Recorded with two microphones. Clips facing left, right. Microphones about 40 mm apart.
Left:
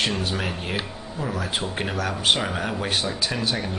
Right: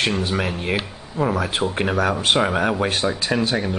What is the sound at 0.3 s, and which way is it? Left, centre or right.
Speech, right.